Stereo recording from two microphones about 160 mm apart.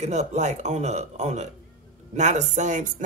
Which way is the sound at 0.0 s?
45° right (ahead or behind).